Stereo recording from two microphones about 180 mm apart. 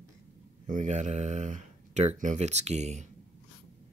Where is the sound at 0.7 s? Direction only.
45° right (ahead or behind).